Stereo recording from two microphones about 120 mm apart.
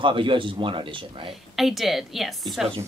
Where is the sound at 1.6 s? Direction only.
Centre (ahead or behind).